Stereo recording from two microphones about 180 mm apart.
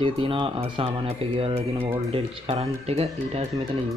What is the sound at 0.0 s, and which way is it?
A man's voice, 30° right (ahead or behind).